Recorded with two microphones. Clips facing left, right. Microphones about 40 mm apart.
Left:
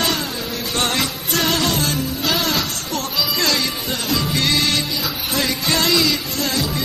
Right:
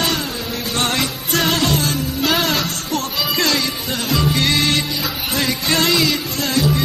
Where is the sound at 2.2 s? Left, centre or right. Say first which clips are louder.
Right 3 dB; right.